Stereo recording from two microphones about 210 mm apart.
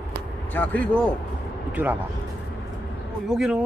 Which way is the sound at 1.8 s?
10° right (ahead or behind).